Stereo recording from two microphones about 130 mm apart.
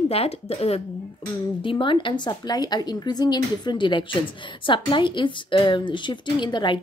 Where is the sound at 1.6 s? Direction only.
40° left (ahead or behind).